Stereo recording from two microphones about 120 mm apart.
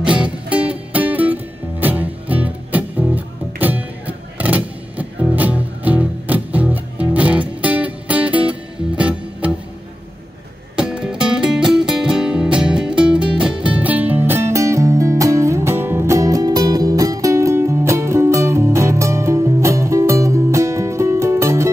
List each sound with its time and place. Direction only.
0.0 s music: 10° right (ahead or behind)
10.8 s music: 5° right (ahead or behind); by 21.6 s 25° right (ahead or behind)